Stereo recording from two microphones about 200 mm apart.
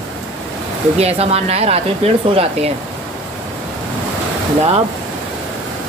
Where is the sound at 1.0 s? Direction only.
30° right (ahead or behind).